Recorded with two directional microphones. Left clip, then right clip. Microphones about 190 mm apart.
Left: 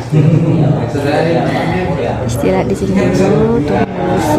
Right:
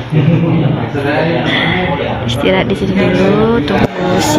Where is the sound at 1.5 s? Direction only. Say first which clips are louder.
Right 3 dB; 25° left (ahead or behind).